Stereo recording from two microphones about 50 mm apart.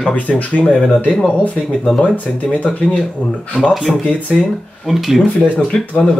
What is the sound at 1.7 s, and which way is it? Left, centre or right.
Speech, centre.